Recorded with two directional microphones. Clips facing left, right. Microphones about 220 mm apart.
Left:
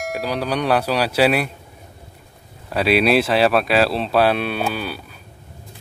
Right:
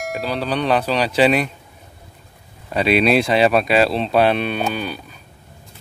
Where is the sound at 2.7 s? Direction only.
5° left (ahead or behind).